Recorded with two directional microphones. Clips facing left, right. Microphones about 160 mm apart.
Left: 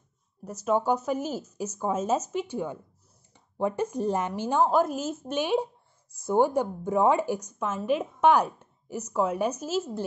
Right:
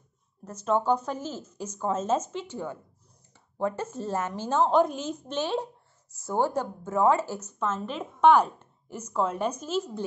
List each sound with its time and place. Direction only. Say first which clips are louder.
0.5 s a woman's voice: even; 10° left (ahead or behind)